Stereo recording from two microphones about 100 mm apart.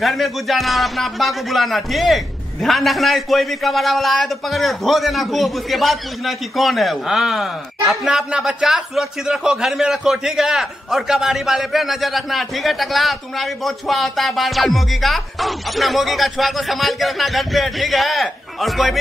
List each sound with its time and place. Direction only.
0.0 s speech: centre (ahead or behind)